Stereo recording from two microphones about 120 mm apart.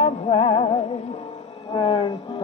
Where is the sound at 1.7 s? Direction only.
50° left (ahead or behind).